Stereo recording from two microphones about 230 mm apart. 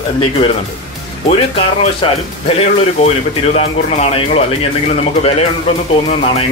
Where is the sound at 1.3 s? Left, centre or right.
Left.